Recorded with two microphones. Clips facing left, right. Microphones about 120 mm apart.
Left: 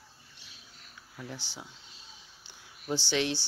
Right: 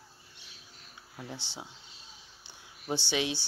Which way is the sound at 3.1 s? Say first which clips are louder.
Left 2 dB; 15° right (ahead or behind).